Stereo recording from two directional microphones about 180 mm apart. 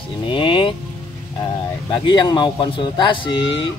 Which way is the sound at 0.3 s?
30° left (ahead or behind).